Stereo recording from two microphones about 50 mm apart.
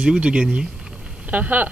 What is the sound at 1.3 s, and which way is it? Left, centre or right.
Speech, right.